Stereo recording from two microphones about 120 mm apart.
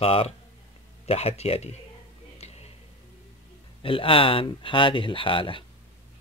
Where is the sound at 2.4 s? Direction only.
60° left (ahead or behind).